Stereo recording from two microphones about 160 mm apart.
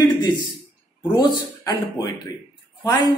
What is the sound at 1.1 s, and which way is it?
Speech, 25° left (ahead or behind).